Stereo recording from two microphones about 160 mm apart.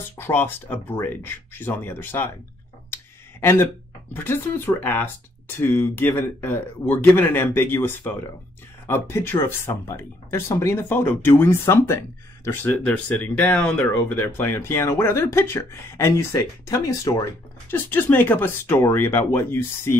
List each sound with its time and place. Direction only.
0.2 s speech: 15° left (ahead or behind)
2.9 s a sound: 15° left (ahead or behind)
4.1 s speech: 10° left (ahead or behind)